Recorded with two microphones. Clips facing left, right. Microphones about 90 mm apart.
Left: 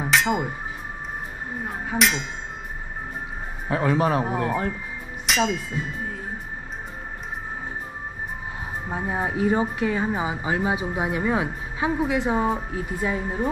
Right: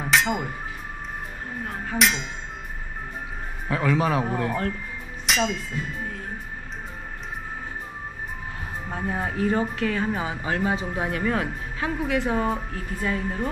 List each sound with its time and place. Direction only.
0.0 s a sound: centre (ahead or behind)
1.6 s a sound: 10° left (ahead or behind)
2.0 s speech: centre (ahead or behind)
3.6 s a man's voice: 25° left (ahead or behind)
4.2 s speech: 10° left (ahead or behind)
5.2 s speech: centre (ahead or behind)
8.8 s speech: 15° left (ahead or behind)